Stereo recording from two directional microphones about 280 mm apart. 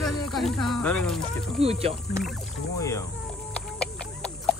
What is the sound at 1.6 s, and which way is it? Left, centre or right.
Speech, right.